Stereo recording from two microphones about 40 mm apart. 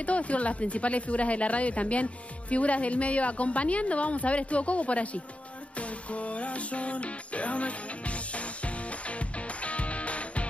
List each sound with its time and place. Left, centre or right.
0.0 s a woman's voice: left
5.8 s music: left